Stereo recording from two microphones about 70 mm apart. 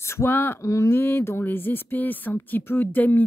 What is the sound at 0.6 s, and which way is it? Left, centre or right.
Speech, left.